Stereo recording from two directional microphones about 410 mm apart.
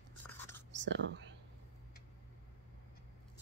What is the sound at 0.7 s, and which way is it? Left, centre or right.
Whispering, right.